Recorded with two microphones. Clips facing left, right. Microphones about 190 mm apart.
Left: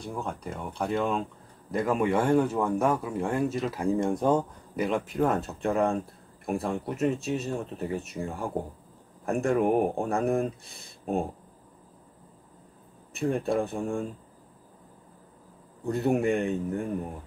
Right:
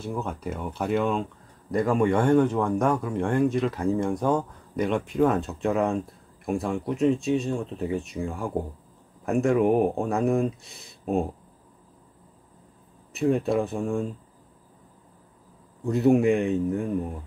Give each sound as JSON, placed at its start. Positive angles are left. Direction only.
{"t": 0.0, "sound": "speech", "side_deg": 0}
{"t": 4.2, "sound": "speech", "side_deg": 20}
{"t": 4.7, "sound": "speech", "side_deg": 0}
{"t": 13.1, "sound": "speech", "side_deg": 0}
{"t": 15.8, "sound": "speech", "side_deg": 0}